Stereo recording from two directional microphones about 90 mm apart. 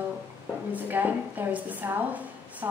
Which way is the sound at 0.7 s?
20° right (ahead or behind).